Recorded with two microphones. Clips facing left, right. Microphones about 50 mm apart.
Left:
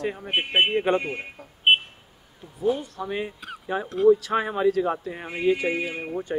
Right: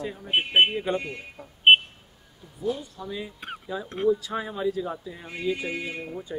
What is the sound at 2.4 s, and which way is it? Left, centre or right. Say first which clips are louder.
Speech: left 5 dB; left.